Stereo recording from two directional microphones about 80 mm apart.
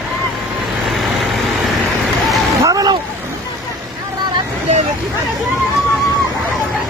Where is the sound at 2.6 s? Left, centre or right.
Right.